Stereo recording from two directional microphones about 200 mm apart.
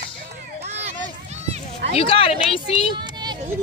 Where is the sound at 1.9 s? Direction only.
30° left (ahead or behind).